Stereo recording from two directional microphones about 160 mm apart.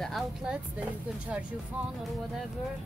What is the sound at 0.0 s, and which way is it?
Speech, centre (ahead or behind).